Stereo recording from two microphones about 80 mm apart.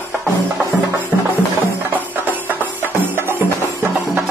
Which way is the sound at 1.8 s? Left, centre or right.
Right.